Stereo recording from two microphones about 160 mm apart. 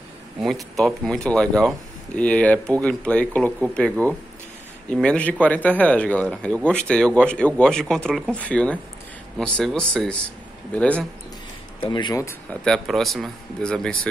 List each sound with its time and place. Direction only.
0.4 s speech: centre (ahead or behind)
11.8 s speech: 30° left (ahead or behind)
12.4 s speech: 5° left (ahead or behind)